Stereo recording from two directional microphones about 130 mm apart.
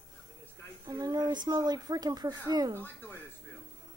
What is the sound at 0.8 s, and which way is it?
Speech, 30° right (ahead or behind).